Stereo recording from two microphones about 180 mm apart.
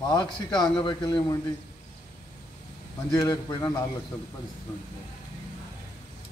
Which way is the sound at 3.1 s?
20° left (ahead or behind).